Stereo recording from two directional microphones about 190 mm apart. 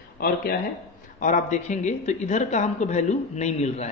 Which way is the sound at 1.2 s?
40° left (ahead or behind).